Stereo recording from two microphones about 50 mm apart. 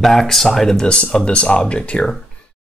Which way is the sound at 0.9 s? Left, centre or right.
Centre.